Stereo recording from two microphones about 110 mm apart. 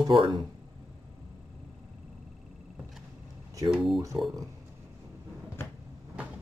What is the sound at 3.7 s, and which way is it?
Speech, centre (ahead or behind).